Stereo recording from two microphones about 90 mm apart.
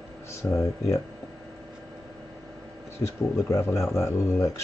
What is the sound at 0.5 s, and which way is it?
Speech, 35° left (ahead or behind).